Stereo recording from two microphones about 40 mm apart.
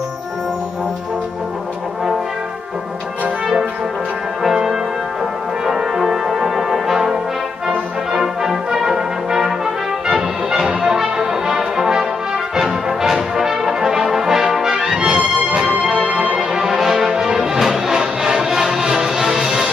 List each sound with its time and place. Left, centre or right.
4.4 s music: centre
5.7 s brass instrument: centre
10.0 s music: centre
12.5 s brass instrument: centre
15.1 s music: right
16.3 s music: centre